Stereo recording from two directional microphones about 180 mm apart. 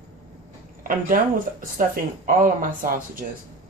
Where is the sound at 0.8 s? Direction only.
50° right (ahead or behind).